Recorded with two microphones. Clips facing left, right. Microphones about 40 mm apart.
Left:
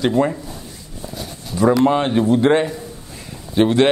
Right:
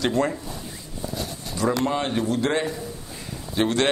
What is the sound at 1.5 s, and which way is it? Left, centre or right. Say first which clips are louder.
Speech: left 9 dB; centre.